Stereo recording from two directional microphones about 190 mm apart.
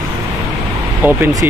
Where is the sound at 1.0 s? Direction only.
10° right (ahead or behind).